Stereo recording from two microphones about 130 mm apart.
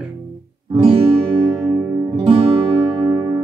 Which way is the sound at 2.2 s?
50° right (ahead or behind).